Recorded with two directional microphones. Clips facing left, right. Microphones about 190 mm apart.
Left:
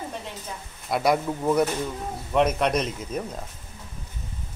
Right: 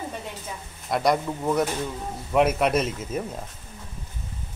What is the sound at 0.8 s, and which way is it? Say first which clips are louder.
Speech: even; 5° left (ahead or behind).